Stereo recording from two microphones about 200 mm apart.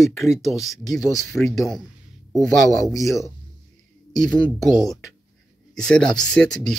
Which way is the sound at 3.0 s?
15° left (ahead or behind).